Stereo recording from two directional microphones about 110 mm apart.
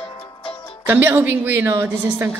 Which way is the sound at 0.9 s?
20° right (ahead or behind).